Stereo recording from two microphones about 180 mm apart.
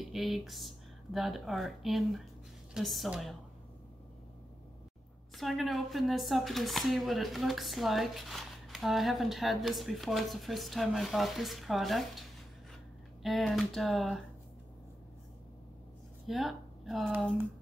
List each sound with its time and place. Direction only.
0.1 s speech: centre (ahead or behind)
5.3 s speech: centre (ahead or behind)
16.3 s speech: centre (ahead or behind)